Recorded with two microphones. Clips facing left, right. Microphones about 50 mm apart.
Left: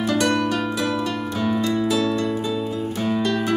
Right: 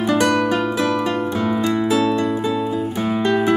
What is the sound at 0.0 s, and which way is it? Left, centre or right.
Harp, right.